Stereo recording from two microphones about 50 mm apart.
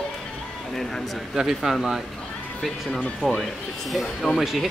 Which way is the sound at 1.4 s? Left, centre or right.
Centre.